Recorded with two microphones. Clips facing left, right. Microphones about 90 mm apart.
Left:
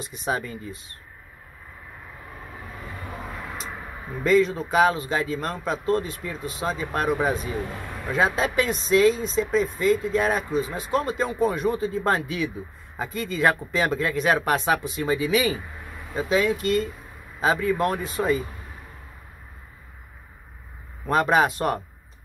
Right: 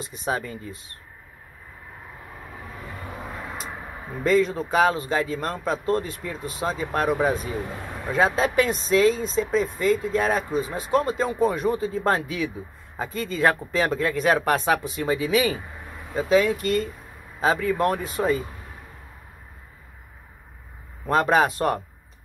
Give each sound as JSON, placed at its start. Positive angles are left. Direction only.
{"t": 0.0, "sound": "speech", "side_deg": -35}
{"t": 3.3, "sound": "a sound", "side_deg": -5}
{"t": 4.2, "sound": "speech", "side_deg": -40}
{"t": 7.8, "sound": "a sound", "side_deg": -10}
{"t": 8.1, "sound": "speech", "side_deg": -40}
{"t": 21.1, "sound": "speech", "side_deg": -35}